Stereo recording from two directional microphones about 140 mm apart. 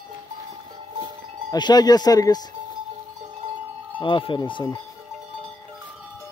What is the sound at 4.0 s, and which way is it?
Speech, 35° left (ahead or behind).